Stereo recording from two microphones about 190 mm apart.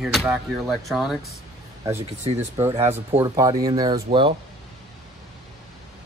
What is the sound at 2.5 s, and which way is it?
Speech, 15° right (ahead or behind).